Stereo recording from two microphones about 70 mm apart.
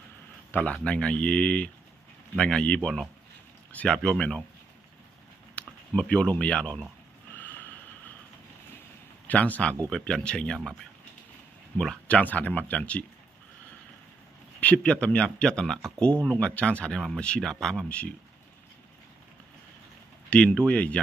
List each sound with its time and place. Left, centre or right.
0.5 s speech: left
3.9 s speech: centre
5.6 s a sound: centre
5.9 s speech: centre
9.3 s speech: left
12.1 s speech: left
14.6 s speech: centre
16.3 s speech: centre
17.8 s speech: centre
20.2 s speech: centre